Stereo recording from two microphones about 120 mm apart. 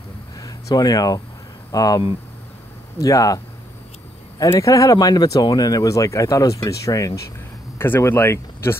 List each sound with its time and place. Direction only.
0.4 s a sound: 30° left (ahead or behind)
1.7 s speech: 30° left (ahead or behind)
4.4 s speech: 25° left (ahead or behind)